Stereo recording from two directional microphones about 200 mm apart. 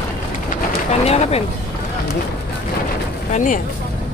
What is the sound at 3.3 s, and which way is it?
Speech, 40° left (ahead or behind).